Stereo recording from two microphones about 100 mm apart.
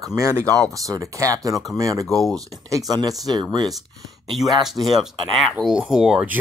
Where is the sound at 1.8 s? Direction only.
35° right (ahead or behind).